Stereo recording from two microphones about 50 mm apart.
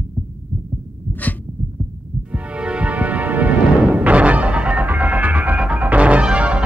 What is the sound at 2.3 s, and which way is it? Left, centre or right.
Music, right.